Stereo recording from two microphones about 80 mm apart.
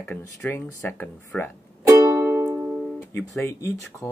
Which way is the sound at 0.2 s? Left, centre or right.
Left.